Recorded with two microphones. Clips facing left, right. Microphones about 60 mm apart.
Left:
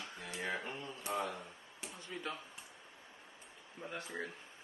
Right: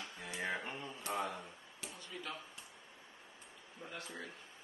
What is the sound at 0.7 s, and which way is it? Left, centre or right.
Mantra, right.